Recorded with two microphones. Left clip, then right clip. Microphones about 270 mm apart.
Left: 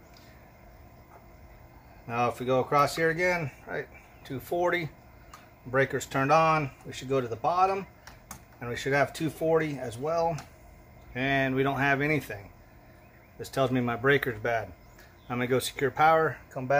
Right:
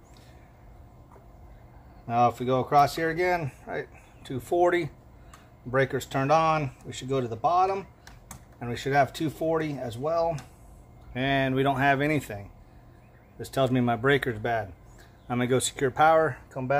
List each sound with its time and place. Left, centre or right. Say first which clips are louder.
2.0 s speech: right 4 dB; centre
13.4 s speech: right 2 dB; centre